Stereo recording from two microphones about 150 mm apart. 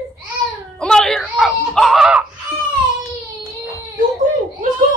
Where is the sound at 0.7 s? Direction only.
5° left (ahead or behind).